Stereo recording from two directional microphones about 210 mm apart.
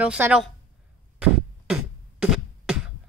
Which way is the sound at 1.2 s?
5° right (ahead or behind).